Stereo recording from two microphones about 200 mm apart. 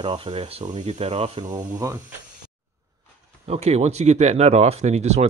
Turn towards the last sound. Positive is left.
turn(degrees=-35)  # may be behind; listen again after turning